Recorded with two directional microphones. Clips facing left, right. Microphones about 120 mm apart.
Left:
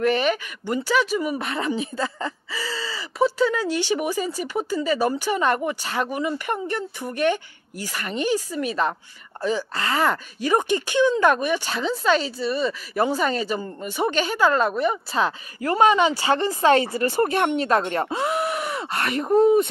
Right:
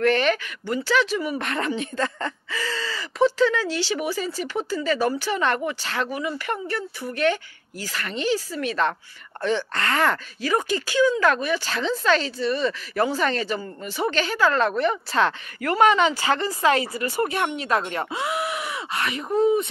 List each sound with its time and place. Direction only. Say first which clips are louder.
0.0 s speech: right 1 dB; 5° left (ahead or behind)
10.4 s speech: left 3 dB; 20° left (ahead or behind)
15.6 s a woman's voice: left 1 dB; 25° left (ahead or behind); by 19.7 s 45° left (ahead or behind)